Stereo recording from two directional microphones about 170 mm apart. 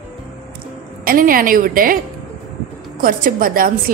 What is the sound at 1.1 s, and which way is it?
Speech, 55° right (ahead or behind).